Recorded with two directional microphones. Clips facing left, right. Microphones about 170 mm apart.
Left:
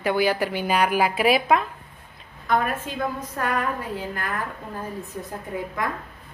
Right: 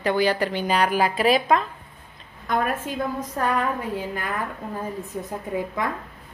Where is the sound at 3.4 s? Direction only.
30° right (ahead or behind).